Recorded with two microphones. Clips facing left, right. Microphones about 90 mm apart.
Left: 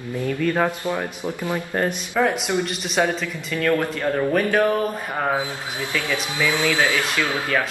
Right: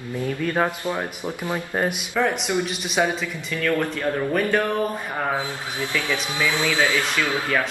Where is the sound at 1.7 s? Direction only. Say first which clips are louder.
Even; 10° right (ahead or behind).